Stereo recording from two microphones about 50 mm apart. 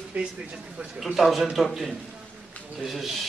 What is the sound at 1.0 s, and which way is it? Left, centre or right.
Speech, centre.